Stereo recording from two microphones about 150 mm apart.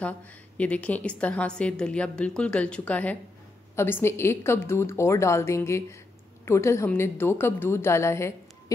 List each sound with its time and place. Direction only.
0.6 s a woman's voice: 10° left (ahead or behind)